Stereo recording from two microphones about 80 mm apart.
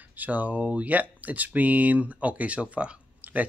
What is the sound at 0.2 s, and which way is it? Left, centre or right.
Speech, centre.